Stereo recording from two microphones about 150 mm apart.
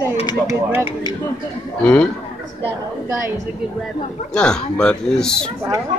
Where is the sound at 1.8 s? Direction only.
5° left (ahead or behind).